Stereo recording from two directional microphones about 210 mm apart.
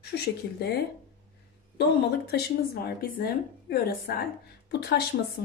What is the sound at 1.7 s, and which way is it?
Speech, 50° left (ahead or behind).